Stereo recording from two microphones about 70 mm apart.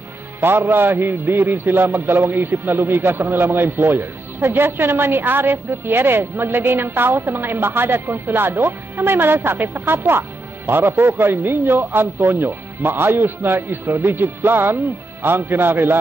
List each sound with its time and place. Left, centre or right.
0.4 s a man's voice: right
10.7 s a man's voice: right